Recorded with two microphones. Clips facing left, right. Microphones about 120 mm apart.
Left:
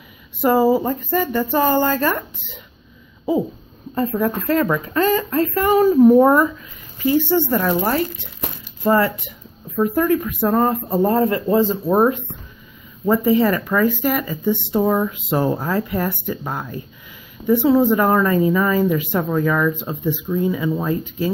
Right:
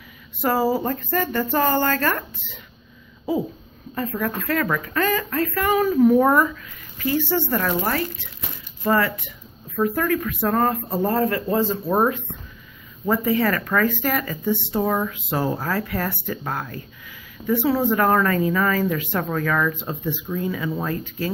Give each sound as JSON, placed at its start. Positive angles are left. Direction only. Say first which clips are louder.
{"t": 0.4, "sound": "a woman's voice", "louder": "left 5 dB", "side_deg": 15}
{"t": 3.9, "sound": "speech", "louder": "left 6 dB", "side_deg": 30}
{"t": 13.1, "sound": "a woman's voice", "louder": "left 5 dB", "side_deg": 20}